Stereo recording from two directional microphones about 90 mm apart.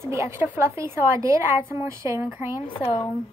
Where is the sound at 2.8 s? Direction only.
50° left (ahead or behind).